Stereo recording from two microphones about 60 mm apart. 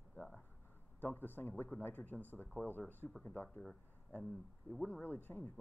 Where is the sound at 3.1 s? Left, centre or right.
Centre.